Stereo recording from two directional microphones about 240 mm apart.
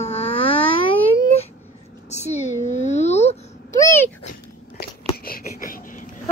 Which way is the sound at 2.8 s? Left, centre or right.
Left.